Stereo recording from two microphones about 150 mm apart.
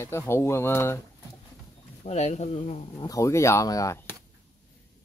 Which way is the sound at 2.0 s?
45° left (ahead or behind).